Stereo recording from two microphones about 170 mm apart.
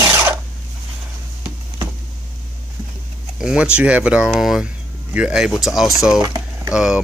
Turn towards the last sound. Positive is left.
turn(degrees=-5)  # may be behind; listen again after turning